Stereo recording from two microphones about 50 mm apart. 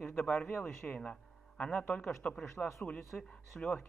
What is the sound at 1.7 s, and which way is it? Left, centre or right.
Speech, left.